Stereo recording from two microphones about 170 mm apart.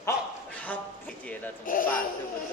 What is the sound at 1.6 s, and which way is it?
Speech, 55° left (ahead or behind).